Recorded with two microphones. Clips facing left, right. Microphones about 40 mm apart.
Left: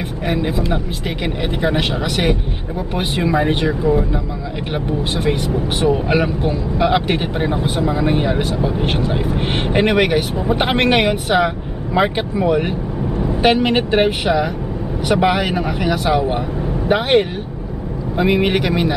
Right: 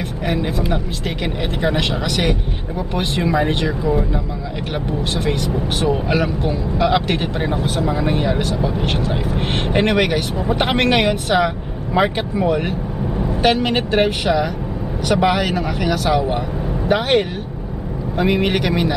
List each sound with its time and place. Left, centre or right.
0.3 s speech: centre
5.1 s speech: centre
18.1 s speech: centre